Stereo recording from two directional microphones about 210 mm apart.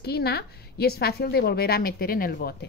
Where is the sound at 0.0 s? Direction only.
50° left (ahead or behind).